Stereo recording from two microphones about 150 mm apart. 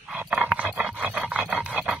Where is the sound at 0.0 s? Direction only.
5° right (ahead or behind).